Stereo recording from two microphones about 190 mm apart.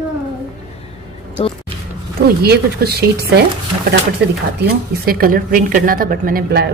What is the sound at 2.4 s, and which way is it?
A woman's voice, 55° right (ahead or behind).